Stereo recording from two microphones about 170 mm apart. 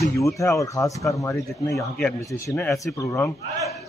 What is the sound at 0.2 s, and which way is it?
Speech, 20° left (ahead or behind).